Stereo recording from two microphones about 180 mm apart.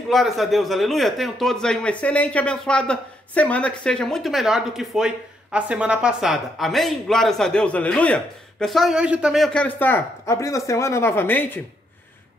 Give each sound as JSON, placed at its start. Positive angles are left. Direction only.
{"t": 0.1, "sound": "speech", "side_deg": 0}